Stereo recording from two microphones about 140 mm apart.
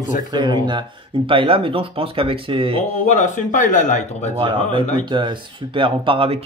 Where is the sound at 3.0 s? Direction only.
60° left (ahead or behind).